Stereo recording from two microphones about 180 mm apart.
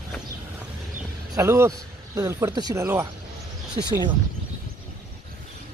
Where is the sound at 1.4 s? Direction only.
15° right (ahead or behind).